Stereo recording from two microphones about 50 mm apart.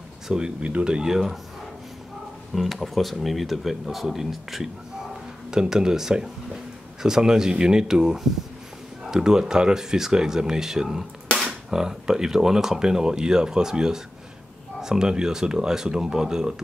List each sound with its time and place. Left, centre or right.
0.3 s speech: centre
2.5 s speech: centre